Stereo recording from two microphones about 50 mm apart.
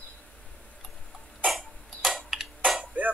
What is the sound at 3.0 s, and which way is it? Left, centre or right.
Music, right.